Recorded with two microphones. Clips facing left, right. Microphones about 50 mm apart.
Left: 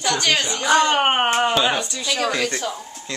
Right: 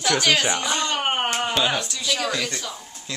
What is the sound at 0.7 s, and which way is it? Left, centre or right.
Speech, left.